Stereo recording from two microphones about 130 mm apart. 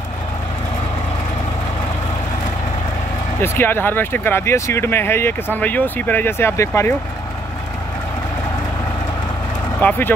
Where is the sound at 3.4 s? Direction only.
15° left (ahead or behind).